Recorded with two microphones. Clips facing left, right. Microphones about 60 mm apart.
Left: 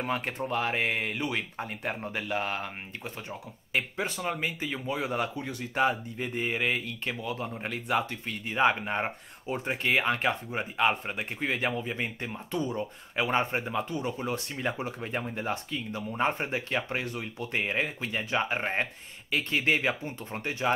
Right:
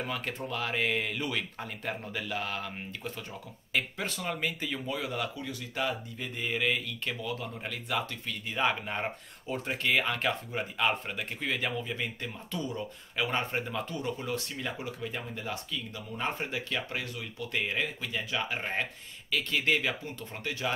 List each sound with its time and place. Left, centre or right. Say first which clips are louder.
0.0 s speech: left 4 dB; left
3.3 s speech: left 3 dB; centre